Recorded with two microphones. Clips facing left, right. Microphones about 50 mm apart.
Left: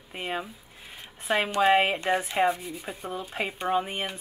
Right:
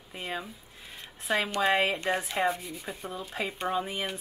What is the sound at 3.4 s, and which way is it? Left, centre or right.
Speech, left.